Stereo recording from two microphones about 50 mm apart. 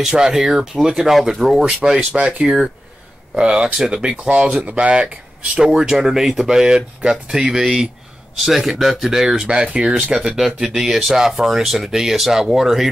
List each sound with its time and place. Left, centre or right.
0.0 s speech: centre
5.7 s speech: centre
10.1 s speech: centre